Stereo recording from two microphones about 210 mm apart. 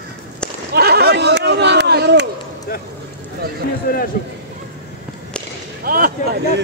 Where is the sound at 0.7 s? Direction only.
50° right (ahead or behind).